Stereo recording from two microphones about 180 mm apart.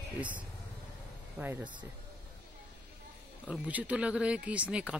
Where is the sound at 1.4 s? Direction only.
10° right (ahead or behind).